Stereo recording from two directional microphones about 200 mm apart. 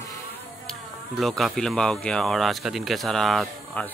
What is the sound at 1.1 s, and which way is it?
Speech, centre (ahead or behind).